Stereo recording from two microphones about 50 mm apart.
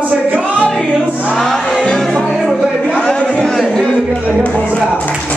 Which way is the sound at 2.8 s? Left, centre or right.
Centre.